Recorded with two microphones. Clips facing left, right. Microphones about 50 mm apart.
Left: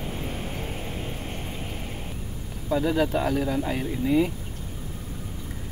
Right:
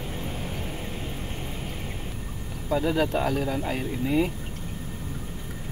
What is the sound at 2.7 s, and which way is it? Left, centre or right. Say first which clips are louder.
Speech: left 1 dB; centre.